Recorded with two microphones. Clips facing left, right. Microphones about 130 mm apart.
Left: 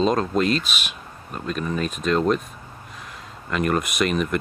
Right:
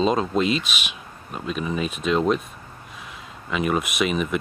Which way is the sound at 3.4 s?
5° right (ahead or behind).